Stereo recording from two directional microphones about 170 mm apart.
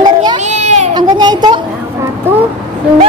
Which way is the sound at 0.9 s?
25° right (ahead or behind).